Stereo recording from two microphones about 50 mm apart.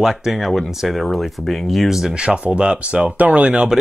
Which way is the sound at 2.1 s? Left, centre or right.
Centre.